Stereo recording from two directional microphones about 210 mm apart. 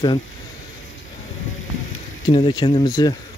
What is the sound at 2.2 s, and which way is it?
Speech, 20° left (ahead or behind).